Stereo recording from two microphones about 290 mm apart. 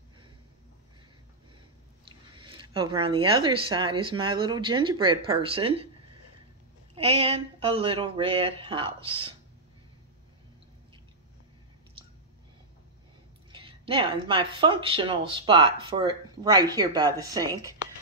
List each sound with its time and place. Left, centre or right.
2.0 s speech: centre
7.0 s speech: centre
13.5 s speech: centre